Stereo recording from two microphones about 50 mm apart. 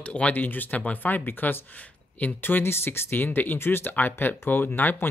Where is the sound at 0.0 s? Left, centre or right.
Left.